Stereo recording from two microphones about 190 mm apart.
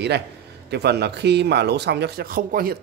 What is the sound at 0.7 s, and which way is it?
A man's voice, 60° right (ahead or behind).